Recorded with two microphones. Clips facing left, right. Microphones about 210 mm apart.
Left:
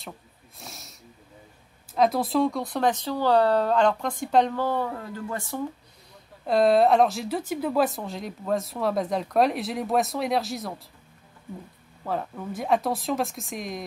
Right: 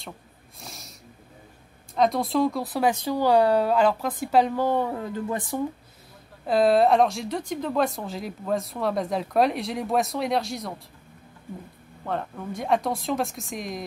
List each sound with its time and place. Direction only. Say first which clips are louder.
0.6 s snort: right 1 dB; centre (ahead or behind)
2.0 s speech: even; centre (ahead or behind)
4.6 s speech: right 3 dB; 20° right (ahead or behind)
6.4 s speech: even; centre (ahead or behind)
12.1 s speech: even; 5° left (ahead or behind)